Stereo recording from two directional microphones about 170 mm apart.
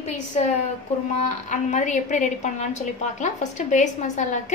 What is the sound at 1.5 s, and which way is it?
A woman's voice, 45° left (ahead or behind).